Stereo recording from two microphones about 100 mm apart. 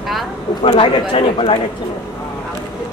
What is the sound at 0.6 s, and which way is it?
Speech, 60° left (ahead or behind).